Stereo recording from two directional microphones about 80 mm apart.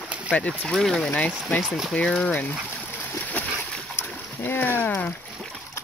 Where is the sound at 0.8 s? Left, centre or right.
Centre.